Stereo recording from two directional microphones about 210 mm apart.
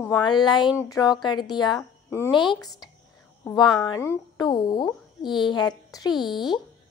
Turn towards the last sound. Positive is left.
turn(degrees=0)  # may be behind; listen again after turning